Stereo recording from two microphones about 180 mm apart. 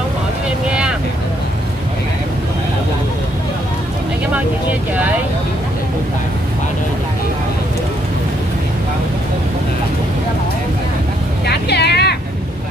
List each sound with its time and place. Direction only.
0.7 s vehicle: 5° right (ahead or behind)
11.4 s vehicle: 65° left (ahead or behind)